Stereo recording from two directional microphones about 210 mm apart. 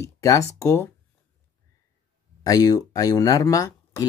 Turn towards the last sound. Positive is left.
turn(degrees=15)  # may be behind; listen again after turning